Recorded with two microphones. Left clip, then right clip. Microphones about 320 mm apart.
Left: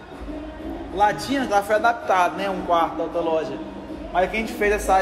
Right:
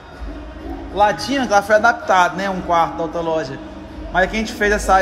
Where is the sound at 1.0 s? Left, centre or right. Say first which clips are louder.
Right 4 dB; right.